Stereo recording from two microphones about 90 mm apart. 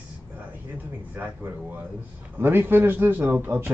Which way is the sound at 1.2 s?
20° right (ahead or behind).